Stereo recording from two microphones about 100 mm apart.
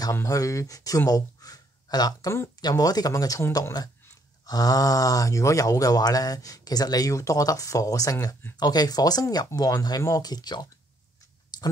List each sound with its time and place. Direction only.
0.1 s speech: 30° left (ahead or behind)
4.5 s speech: 40° left (ahead or behind)
11.5 s a sound: 45° left (ahead or behind)